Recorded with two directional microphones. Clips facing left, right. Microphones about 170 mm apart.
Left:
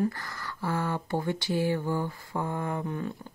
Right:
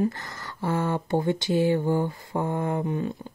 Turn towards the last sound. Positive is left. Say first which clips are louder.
# right 5 dB
turn(degrees=-20)  # may be behind; listen again after turning